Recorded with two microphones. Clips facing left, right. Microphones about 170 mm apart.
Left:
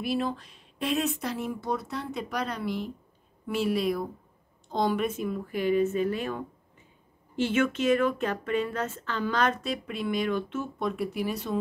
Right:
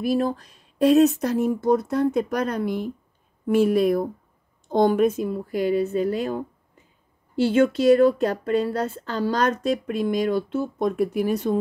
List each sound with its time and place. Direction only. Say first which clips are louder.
0.0 s speech: right 6 dB; 45° right (ahead or behind)